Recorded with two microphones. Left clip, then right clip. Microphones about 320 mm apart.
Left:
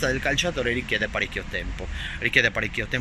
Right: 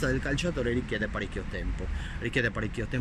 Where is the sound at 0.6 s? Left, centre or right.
Left.